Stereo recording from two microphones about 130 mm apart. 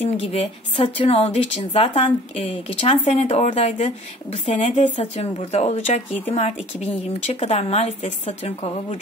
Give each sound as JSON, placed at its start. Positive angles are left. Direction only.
{"t": 0.0, "sound": "speech", "side_deg": 55}